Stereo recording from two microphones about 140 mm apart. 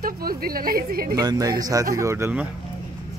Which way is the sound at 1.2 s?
30° right (ahead or behind).